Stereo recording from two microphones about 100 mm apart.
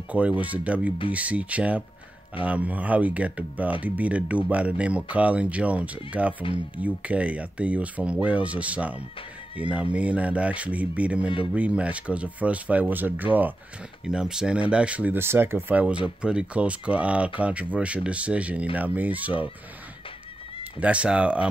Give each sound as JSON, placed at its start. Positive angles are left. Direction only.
{"t": 0.1, "sound": "speech", "side_deg": -15}
{"t": 14.0, "sound": "speech", "side_deg": -5}
{"t": 20.8, "sound": "speech", "side_deg": -10}